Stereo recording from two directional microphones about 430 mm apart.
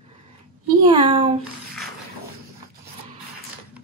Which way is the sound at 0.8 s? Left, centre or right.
Centre.